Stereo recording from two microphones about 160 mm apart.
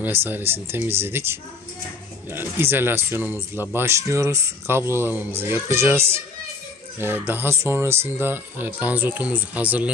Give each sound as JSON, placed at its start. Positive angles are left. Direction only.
{"t": 0.0, "sound": "speech", "side_deg": -15}